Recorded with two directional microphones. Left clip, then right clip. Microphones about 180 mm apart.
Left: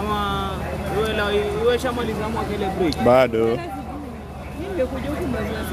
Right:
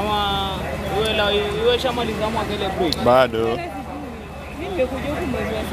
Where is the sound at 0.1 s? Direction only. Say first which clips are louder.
Right 3 dB; 65° left (ahead or behind).